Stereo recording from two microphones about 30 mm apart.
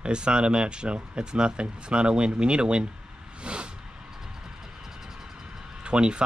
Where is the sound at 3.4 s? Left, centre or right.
Right.